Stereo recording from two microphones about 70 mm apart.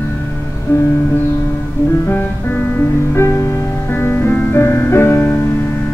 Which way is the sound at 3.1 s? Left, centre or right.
Left.